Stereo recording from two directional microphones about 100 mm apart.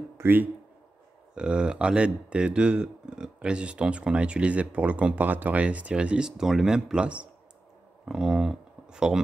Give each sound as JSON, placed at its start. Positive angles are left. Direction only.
{"t": 0.2, "sound": "speech", "side_deg": -20}
{"t": 1.3, "sound": "speech", "side_deg": -10}